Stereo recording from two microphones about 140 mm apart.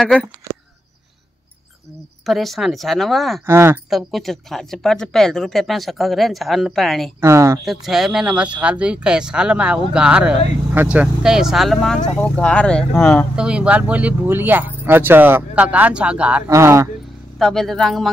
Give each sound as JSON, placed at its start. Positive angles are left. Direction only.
{"t": 0.0, "sound": "speech", "side_deg": 0}
{"t": 2.2, "sound": "speech", "side_deg": 0}
{"t": 3.4, "sound": "speech", "side_deg": -15}
{"t": 3.9, "sound": "speech", "side_deg": 0}
{"t": 7.2, "sound": "speech", "side_deg": -20}
{"t": 7.6, "sound": "speech", "side_deg": 0}
{"t": 13.4, "sound": "speech", "side_deg": -5}
{"t": 16.4, "sound": "speech", "side_deg": -20}
{"t": 17.4, "sound": "speech", "side_deg": 0}